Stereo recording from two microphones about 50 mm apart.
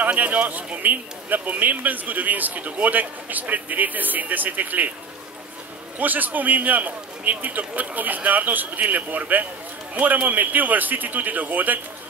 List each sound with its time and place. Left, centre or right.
0.0 s a man's voice: right
5.9 s a man's voice: right